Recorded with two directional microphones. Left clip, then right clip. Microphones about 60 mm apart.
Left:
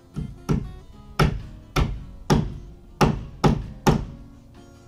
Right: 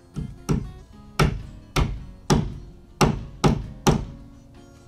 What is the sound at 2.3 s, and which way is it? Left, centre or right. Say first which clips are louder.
Thunk: even; centre.